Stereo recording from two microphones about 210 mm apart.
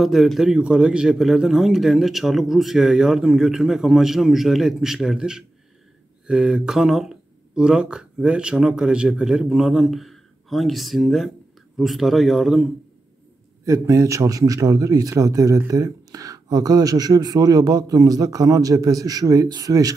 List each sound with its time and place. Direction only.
0.0 s a man's voice: centre (ahead or behind)
13.7 s a man's voice: 15° right (ahead or behind)